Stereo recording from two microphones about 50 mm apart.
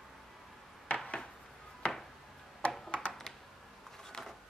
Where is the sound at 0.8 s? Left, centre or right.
Left.